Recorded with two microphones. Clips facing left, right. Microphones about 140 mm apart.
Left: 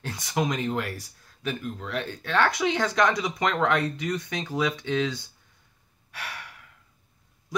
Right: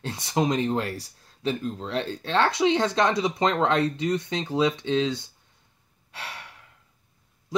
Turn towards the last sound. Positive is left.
turn(degrees=-25)  # may be behind; listen again after turning